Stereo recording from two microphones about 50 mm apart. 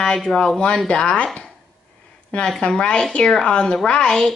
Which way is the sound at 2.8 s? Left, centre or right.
Centre.